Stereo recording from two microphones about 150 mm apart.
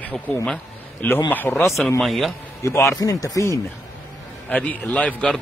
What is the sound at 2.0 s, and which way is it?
Speech, centre (ahead or behind).